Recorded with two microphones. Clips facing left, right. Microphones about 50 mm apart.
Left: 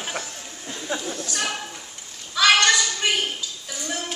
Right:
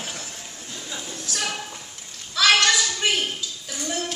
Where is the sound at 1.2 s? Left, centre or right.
Centre.